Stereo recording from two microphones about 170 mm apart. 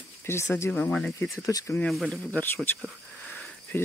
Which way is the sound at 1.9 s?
5° left (ahead or behind).